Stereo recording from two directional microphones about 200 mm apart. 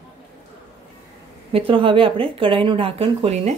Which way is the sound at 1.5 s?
25° right (ahead or behind).